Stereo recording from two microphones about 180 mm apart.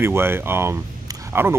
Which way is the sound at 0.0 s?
15° right (ahead or behind).